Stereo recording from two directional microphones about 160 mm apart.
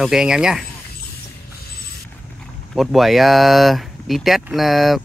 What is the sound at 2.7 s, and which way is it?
Speech, centre (ahead or behind).